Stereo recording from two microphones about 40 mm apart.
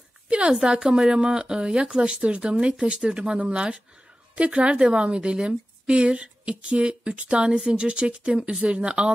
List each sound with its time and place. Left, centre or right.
0.5 s a woman's voice: right
3.3 s a woman's voice: right